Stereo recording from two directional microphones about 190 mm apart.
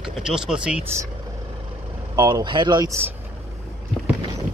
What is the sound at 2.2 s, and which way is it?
Speech, 25° right (ahead or behind).